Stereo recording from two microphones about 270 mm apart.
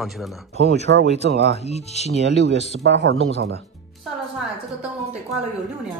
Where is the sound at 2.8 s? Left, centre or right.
Right.